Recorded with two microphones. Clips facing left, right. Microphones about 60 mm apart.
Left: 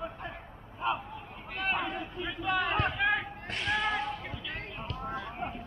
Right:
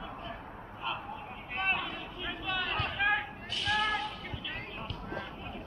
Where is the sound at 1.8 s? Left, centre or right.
Left.